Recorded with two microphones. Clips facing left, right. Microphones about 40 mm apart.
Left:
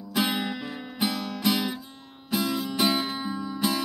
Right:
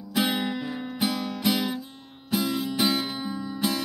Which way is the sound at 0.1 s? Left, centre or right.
Centre.